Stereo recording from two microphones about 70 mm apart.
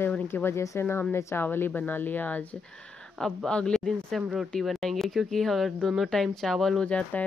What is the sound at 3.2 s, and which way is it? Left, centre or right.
Speech, centre.